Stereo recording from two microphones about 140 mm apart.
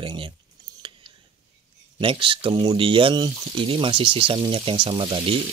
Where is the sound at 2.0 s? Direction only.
40° right (ahead or behind).